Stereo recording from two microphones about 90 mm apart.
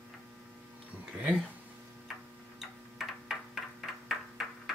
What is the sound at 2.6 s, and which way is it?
Tick-tock, 5° right (ahead or behind).